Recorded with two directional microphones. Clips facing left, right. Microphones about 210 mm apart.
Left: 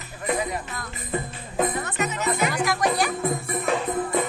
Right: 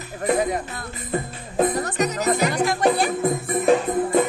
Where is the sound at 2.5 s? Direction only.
25° right (ahead or behind).